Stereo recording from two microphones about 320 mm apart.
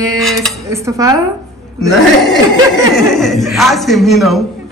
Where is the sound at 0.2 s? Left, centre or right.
Centre.